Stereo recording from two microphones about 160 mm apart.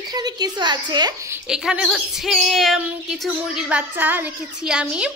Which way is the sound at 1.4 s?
5° right (ahead or behind).